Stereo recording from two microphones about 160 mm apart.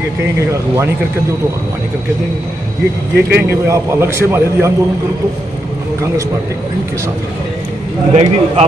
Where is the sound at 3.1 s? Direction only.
90° right.